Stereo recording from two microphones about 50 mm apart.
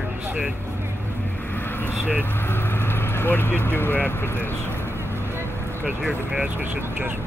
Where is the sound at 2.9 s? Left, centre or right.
Left.